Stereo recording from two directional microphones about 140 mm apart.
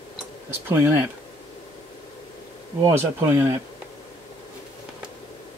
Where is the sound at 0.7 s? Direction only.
15° right (ahead or behind).